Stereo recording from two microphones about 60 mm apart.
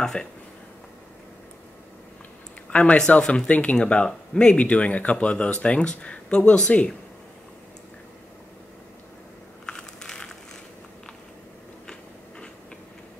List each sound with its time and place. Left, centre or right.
0.0 s speech: centre
2.7 s speech: centre
9.7 s a sound: centre